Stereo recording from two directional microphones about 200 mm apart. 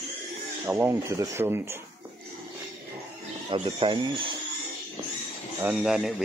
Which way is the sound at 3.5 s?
25° right (ahead or behind).